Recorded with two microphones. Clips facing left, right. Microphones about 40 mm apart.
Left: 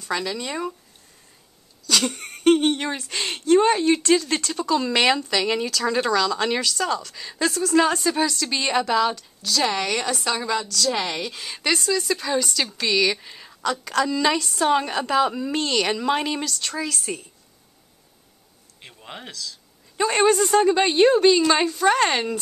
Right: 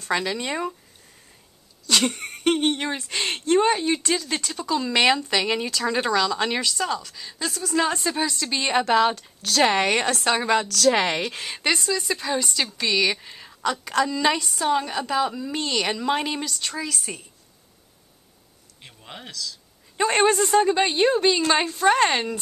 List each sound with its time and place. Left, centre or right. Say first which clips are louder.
0.1 s speech: right 2 dB; right
1.9 s a sound: right 1 dB; centre
2.6 s a woman's voice: left 1 dB; centre
3.6 s a woman's voice: left 3 dB; centre
8.7 s speech: right 2 dB; right
11.4 s speech: left 3 dB; centre
14.6 s a woman's voice: left 5 dB; centre
15.5 s a woman's voice: left 3 dB; centre
18.8 s speech: left 2 dB; centre
20.0 s speech: left 1 dB; right
20.3 s a woman's voice: left 1 dB; centre